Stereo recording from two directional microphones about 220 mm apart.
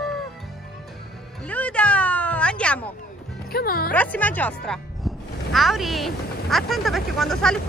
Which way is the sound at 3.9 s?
5° left (ahead or behind).